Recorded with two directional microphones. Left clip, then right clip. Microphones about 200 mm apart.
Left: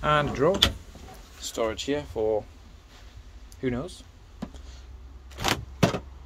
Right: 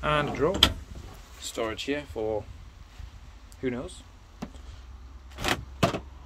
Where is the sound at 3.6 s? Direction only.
15° left (ahead or behind).